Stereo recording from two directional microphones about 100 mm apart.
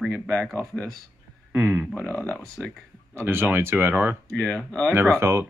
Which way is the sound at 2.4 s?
5° left (ahead or behind).